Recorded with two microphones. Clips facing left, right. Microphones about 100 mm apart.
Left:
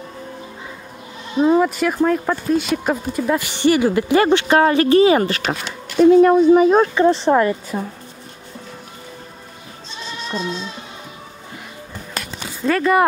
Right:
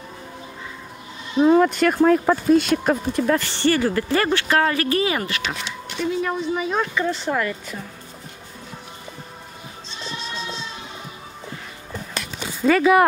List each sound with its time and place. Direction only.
1.4 s speech: 5° left (ahead or behind); by 5.4 s 30° left (ahead or behind)
5.4 s speech: 50° left (ahead or behind)
7.0 s speech: 30° left (ahead or behind)
7.7 s speech: 50° left (ahead or behind)
12.6 s speech: centre (ahead or behind)